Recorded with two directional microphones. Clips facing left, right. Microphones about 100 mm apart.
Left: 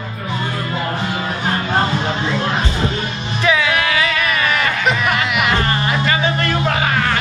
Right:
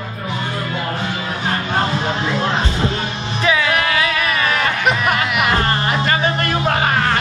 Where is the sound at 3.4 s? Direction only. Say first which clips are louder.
Left 1 dB; 40° right (ahead or behind).